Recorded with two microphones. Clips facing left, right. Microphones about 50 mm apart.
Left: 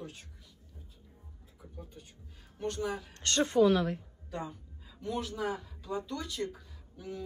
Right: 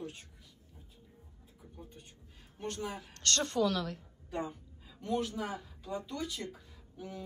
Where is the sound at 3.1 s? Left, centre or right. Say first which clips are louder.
Left 2 dB; centre.